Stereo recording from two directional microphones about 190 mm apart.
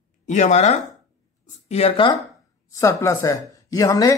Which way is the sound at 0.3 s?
40° left (ahead or behind).